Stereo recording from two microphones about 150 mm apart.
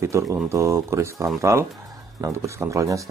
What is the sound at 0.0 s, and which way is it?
Speech, 20° right (ahead or behind).